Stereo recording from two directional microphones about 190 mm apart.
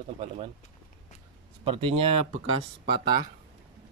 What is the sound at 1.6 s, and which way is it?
Speech, 30° right (ahead or behind).